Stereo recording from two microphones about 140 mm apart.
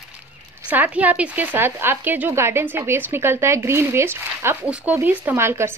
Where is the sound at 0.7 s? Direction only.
10° right (ahead or behind).